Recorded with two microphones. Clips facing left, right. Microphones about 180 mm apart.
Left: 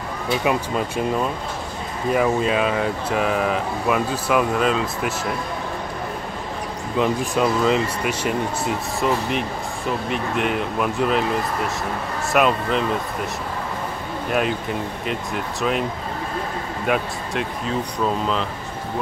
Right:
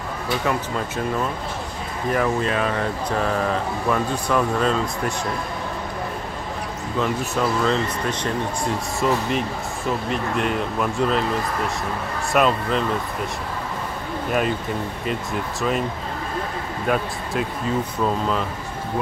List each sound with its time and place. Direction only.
0.4 s speech: 15° left (ahead or behind)
2.0 s speech: 15° left (ahead or behind)
7.0 s speech: 15° left (ahead or behind)
12.3 s speech: centre (ahead or behind)
14.3 s speech: centre (ahead or behind)
16.8 s speech: centre (ahead or behind)